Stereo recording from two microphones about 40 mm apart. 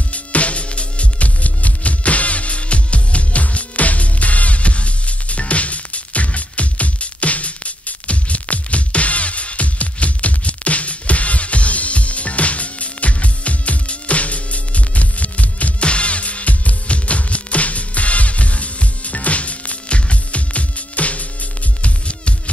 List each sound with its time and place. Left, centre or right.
0.1 s music: left